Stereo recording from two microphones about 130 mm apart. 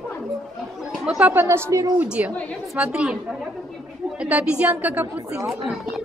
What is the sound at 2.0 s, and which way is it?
A woman's voice, 10° right (ahead or behind).